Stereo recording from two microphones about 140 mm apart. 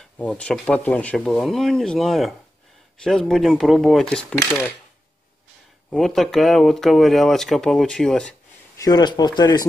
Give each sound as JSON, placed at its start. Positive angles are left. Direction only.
{"t": 0.2, "sound": "speech", "side_deg": 10}
{"t": 5.9, "sound": "speech", "side_deg": 0}
{"t": 8.7, "sound": "speech", "side_deg": 30}